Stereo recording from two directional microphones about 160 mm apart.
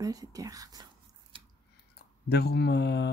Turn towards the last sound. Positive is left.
turn(degrees=90)